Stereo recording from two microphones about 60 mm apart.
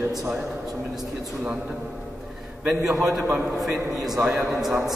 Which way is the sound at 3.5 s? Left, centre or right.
Centre.